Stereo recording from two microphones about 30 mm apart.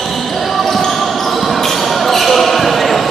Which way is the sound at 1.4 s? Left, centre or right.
Centre.